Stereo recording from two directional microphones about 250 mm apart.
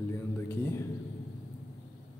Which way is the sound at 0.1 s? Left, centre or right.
Centre.